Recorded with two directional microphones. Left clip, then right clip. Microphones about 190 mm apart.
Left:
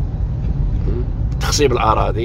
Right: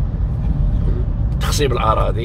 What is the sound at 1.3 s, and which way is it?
Speech, 15° left (ahead or behind).